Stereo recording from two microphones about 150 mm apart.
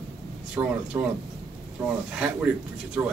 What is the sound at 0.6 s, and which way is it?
Speech, 20° right (ahead or behind).